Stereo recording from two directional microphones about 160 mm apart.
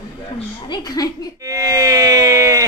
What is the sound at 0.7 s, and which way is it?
Speech, 25° left (ahead or behind).